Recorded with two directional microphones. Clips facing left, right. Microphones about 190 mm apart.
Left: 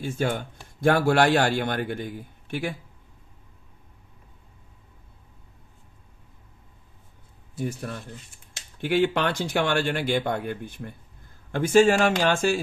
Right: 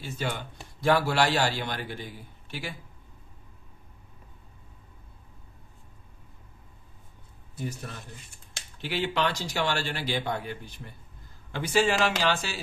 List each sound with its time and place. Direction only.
0.0 s speech: 50° left (ahead or behind)
7.5 s speech: 55° left (ahead or behind)